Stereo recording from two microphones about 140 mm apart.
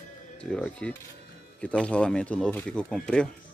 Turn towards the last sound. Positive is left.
turn(degrees=5)  # may be behind; listen again after turning